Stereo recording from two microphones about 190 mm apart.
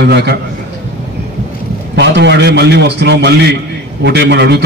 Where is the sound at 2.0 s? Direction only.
65° right (ahead or behind).